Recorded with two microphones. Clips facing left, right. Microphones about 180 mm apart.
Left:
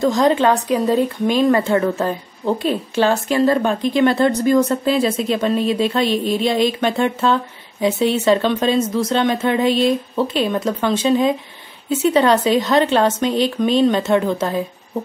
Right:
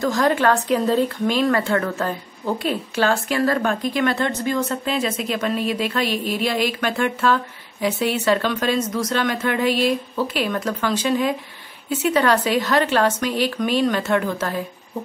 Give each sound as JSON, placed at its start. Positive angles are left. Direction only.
{"t": 0.0, "sound": "speech", "side_deg": 25}